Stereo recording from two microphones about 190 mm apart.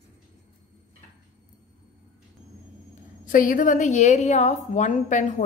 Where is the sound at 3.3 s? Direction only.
45° left (ahead or behind).